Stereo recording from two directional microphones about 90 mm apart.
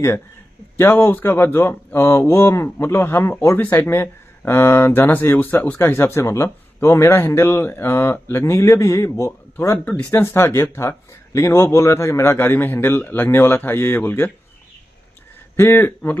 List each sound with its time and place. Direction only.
0.7 s speech: 25° left (ahead or behind)
15.5 s speech: 25° left (ahead or behind)